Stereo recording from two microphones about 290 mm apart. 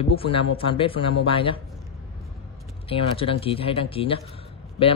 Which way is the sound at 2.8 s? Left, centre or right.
Centre.